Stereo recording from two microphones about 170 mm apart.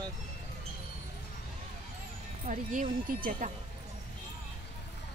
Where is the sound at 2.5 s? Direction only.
45° right (ahead or behind).